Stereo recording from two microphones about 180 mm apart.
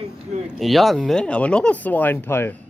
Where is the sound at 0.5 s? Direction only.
Centre (ahead or behind).